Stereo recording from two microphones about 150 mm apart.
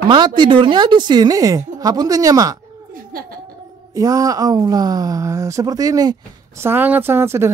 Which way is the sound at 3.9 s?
25° right (ahead or behind).